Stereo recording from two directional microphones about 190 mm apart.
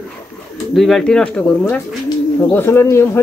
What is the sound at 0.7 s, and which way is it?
Speech, centre (ahead or behind).